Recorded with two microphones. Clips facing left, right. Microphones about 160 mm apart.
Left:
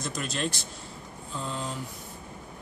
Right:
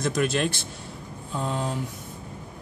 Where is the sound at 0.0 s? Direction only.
60° right (ahead or behind).